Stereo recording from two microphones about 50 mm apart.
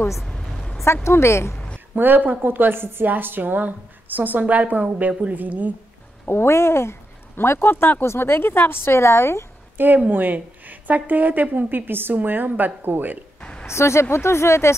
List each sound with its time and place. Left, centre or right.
0.2 s a sound: centre
1.0 s a woman's voice: left
2.0 s speech: right
6.2 s a woman's voice: left
9.8 s speech: right
13.4 s a sound: left
13.7 s a woman's voice: left